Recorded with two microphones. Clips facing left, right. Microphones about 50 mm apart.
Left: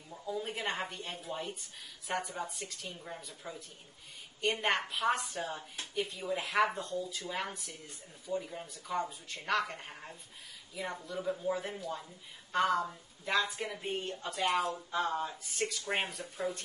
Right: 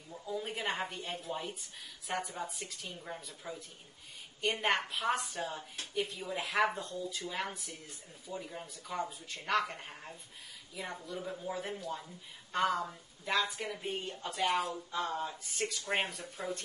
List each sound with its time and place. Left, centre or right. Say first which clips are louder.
0.1 s a woman's voice: left 1 dB; centre
14.9 s speech: left 3 dB; centre
15.1 s speech: left 2 dB; centre